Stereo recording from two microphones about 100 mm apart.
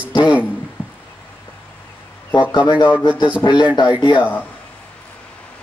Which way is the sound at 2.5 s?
50° left (ahead or behind).